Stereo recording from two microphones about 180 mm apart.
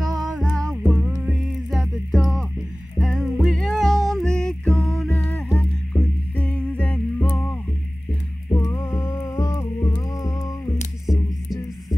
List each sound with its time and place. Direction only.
0.0 s music: centre (ahead or behind); by 10.8 s 20° left (ahead or behind)